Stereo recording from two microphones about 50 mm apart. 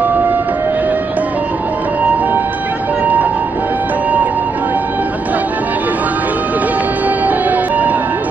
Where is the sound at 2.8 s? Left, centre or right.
Right.